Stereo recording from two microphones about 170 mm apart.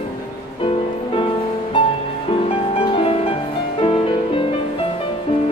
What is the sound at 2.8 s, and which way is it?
Music, 30° left (ahead or behind).